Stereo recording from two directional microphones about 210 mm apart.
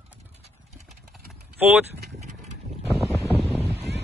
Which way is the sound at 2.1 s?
35° right (ahead or behind).